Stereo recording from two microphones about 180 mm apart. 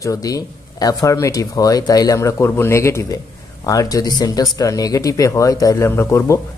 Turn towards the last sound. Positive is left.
turn(degrees=15)  # may be behind; listen again after turning